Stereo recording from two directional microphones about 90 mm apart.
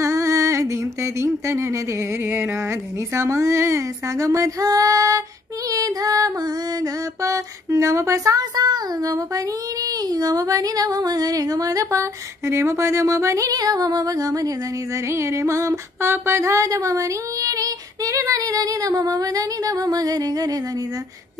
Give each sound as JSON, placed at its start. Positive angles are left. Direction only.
{"t": 0.0, "sound": "female singing", "side_deg": -35}
{"t": 15.0, "sound": "female singing", "side_deg": -30}